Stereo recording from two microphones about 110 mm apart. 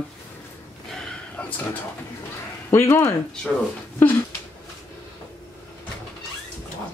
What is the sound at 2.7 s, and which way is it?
Speech, 25° left (ahead or behind).